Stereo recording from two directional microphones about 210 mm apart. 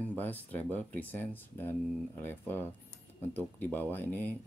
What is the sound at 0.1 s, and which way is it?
Speech, 10° left (ahead or behind).